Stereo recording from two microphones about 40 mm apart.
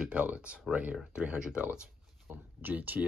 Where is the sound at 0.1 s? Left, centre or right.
Right.